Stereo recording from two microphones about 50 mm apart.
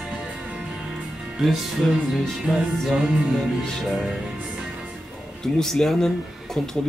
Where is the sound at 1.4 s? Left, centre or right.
Centre.